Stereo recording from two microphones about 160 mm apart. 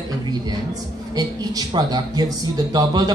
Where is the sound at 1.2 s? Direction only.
25° right (ahead or behind).